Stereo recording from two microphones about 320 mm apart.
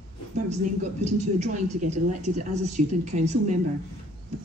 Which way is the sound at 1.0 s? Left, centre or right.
Right.